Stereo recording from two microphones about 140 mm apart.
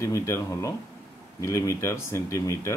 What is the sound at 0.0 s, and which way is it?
A man's voice, 20° left (ahead or behind).